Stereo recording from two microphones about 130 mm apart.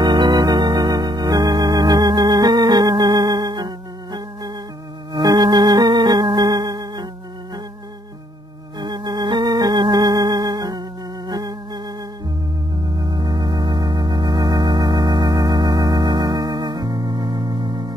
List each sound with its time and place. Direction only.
0.0 s organ: 35° right (ahead or behind)
8.7 s organ: 35° right (ahead or behind)
12.9 s organ: 30° right (ahead or behind)